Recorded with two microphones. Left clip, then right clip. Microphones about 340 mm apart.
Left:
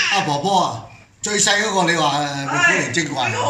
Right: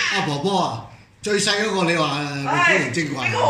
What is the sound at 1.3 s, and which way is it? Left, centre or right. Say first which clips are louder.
Speech: left 3 dB; left.